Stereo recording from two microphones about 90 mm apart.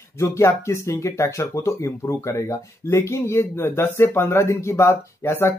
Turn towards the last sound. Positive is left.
turn(degrees=30)  # may be behind; listen again after turning